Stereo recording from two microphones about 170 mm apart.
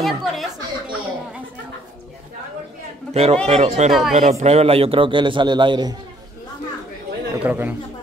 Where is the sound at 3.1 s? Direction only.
35° right (ahead or behind).